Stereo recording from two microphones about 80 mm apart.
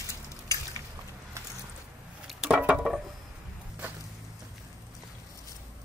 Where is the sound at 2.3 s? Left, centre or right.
Centre.